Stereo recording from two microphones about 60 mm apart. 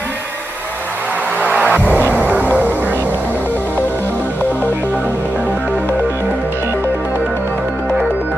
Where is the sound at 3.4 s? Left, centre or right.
Left.